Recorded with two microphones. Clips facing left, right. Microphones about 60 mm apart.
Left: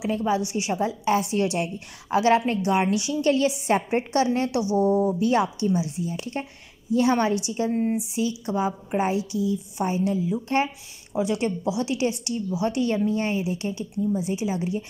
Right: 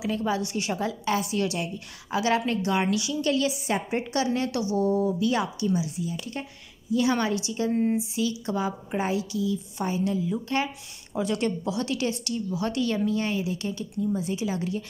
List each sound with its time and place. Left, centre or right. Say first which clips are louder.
0.0 s a woman's voice: left 3 dB; left
4.5 s a woman's voice: left 3 dB; left
7.7 s speech: right 1 dB; centre
8.1 s a woman's voice: left 1 dB; left
11.1 s a woman's voice: left 2 dB; centre